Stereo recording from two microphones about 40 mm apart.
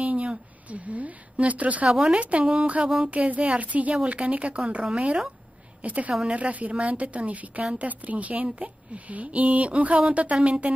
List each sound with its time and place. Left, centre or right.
0.0 s a sound: right
1.3 s a woman's voice: right
1.9 s a woman's voice: centre
2.5 s a woman's voice: right
8.5 s a woman's voice: right
9.1 s a woman's voice: right